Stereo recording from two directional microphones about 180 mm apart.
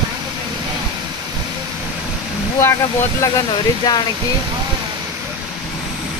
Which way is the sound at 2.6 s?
15° left (ahead or behind).